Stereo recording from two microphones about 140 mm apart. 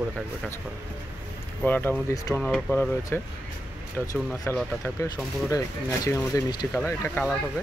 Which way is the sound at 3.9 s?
20° left (ahead or behind).